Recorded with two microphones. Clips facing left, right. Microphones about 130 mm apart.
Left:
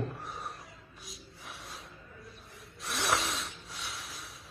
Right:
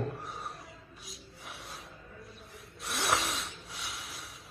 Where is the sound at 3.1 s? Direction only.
Centre (ahead or behind).